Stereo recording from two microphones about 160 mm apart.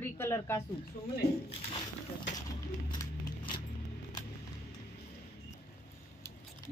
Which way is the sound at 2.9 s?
25° left (ahead or behind).